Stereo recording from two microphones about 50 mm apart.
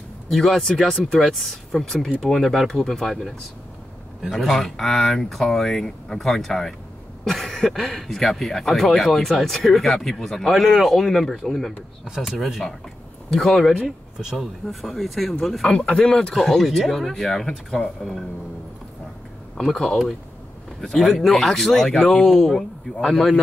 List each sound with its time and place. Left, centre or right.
0.3 s speech: centre
12.0 s speech: centre
13.3 s speech: centre
15.7 s speech: centre
16.3 s speech: centre
19.5 s speech: centre